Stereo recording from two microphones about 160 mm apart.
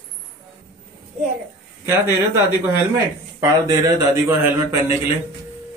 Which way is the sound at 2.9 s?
20° right (ahead or behind).